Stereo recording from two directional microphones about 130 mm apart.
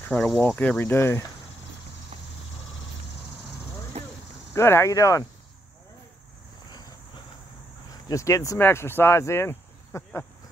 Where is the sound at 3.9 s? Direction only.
55° right (ahead or behind).